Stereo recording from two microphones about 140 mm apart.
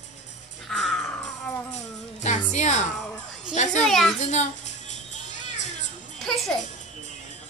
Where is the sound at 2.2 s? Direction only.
55° left (ahead or behind).